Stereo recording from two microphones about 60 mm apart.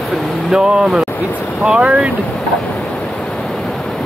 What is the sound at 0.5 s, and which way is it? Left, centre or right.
Speech, centre.